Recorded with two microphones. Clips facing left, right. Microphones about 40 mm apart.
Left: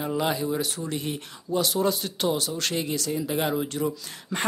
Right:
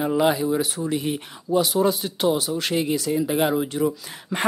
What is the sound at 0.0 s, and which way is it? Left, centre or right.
Speech, centre.